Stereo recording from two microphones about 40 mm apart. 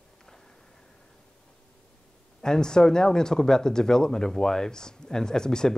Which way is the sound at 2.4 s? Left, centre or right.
Centre.